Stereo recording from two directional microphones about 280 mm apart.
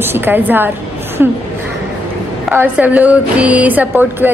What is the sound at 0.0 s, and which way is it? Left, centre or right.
A woman's voice, centre.